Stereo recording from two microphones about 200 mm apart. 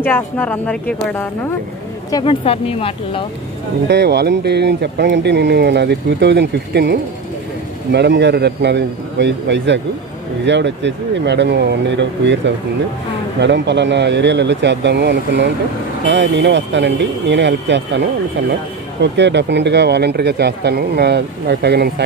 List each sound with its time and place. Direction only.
0.0 s speech: 10° left (ahead or behind)
2.0 s speech: 25° left (ahead or behind)
3.8 s speech: 55° right (ahead or behind)
19.1 s speech: 60° right (ahead or behind)